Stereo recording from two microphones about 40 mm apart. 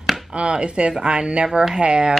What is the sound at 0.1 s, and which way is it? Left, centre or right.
Chopping, right.